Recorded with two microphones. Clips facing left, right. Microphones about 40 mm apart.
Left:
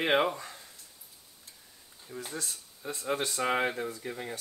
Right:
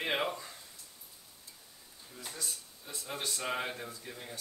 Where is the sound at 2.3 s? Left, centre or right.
Left.